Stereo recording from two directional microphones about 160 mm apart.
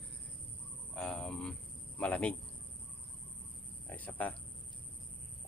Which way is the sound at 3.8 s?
10° left (ahead or behind).